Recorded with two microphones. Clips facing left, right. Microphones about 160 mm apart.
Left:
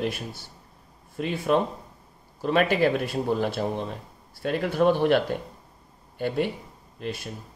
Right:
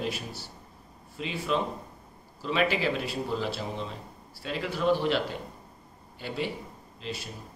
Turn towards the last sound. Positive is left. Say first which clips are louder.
# left 4 dB
turn(degrees=50)  # may be behind; listen again after turning